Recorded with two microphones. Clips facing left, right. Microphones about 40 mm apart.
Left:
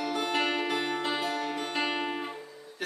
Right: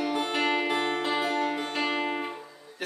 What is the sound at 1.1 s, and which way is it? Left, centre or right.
Music, centre.